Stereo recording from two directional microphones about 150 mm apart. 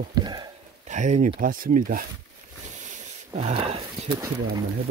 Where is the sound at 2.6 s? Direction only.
55° right (ahead or behind).